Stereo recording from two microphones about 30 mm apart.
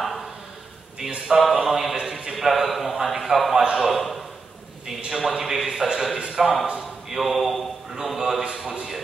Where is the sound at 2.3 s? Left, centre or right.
Centre.